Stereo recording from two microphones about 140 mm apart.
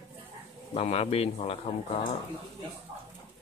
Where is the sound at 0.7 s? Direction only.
45° left (ahead or behind).